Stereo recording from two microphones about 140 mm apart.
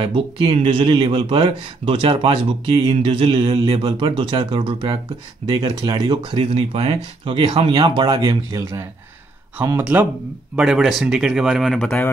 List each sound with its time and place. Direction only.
0.0 s speech: 40° right (ahead or behind); by 12.1 s 5° left (ahead or behind)